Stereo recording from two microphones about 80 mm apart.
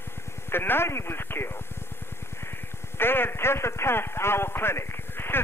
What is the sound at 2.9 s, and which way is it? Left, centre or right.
A man's voice, left.